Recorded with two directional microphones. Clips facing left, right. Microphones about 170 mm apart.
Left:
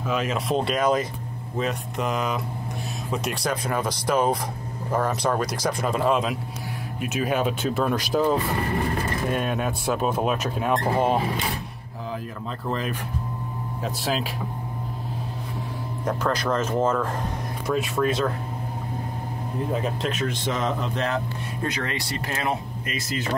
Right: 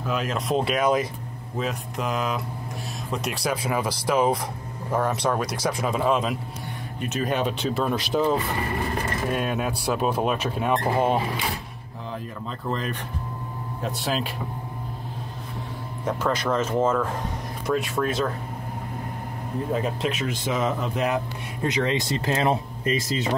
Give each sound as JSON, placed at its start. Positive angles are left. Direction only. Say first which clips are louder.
{"t": 0.0, "sound": "speech", "louder": "left 1 dB", "side_deg": 0}
{"t": 12.6, "sound": "speech", "louder": "left 1 dB", "side_deg": 0}
{"t": 16.1, "sound": "speech", "louder": "even", "side_deg": 0}
{"t": 19.7, "sound": "speech", "louder": "right 2 dB", "side_deg": 0}
{"t": 21.6, "sound": "speech", "louder": "right 6 dB", "side_deg": -20}